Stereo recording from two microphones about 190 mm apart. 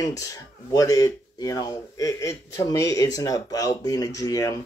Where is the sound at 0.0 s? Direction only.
15° left (ahead or behind).